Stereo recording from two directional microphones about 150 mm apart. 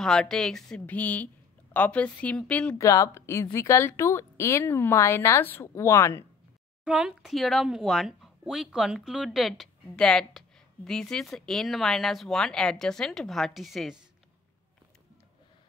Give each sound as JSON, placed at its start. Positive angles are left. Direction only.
{"t": 0.0, "sound": "a woman's voice", "side_deg": 5}
{"t": 2.8, "sound": "a woman's voice", "side_deg": 20}
{"t": 6.8, "sound": "speech", "side_deg": -5}